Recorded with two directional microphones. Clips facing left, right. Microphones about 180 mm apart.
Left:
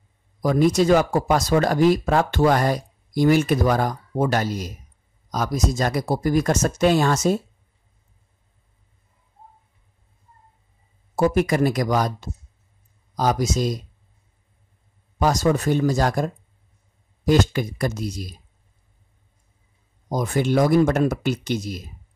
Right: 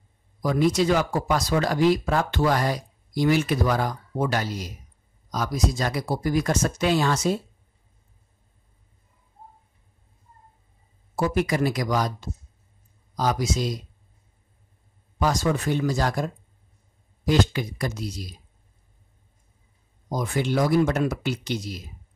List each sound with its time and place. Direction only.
0.4 s speech: 45° left (ahead or behind)
11.1 s speech: 45° left (ahead or behind)
15.1 s speech: 45° left (ahead or behind)
17.3 s speech: 50° left (ahead or behind)
20.1 s speech: 45° left (ahead or behind)